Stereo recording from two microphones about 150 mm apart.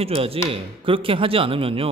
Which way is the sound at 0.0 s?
40° right (ahead or behind).